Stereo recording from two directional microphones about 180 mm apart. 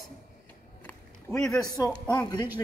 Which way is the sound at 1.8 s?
20° left (ahead or behind).